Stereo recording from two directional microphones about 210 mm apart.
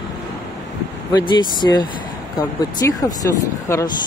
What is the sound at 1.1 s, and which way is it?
Speech, 20° left (ahead or behind).